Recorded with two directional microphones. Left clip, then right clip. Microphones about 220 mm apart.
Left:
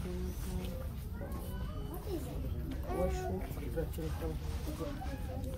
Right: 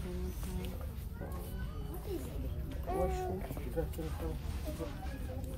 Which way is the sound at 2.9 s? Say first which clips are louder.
Right 1 dB; 40° right (ahead or behind).